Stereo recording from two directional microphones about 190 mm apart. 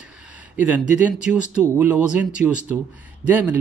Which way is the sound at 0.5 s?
10° right (ahead or behind).